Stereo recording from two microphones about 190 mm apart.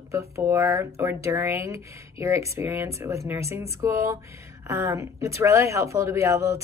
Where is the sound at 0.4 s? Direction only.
15° right (ahead or behind).